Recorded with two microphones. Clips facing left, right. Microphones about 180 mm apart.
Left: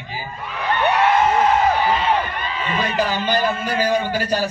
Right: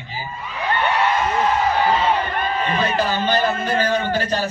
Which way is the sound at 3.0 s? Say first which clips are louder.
Left 2 dB; 10° left (ahead or behind).